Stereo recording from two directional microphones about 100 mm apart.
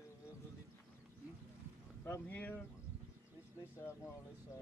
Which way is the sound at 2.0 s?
20° left (ahead or behind).